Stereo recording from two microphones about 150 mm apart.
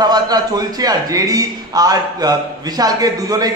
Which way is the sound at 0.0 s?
25° right (ahead or behind).